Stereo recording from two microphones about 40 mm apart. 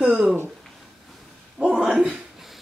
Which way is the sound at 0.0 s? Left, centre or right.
Right.